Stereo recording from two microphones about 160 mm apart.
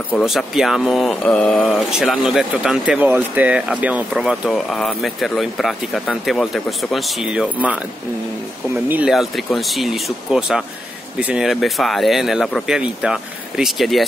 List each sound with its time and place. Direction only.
0.2 s speech: centre (ahead or behind)
8.8 s speech: 10° right (ahead or behind)